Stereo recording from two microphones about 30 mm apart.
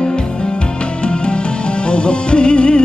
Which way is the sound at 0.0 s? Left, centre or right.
Left.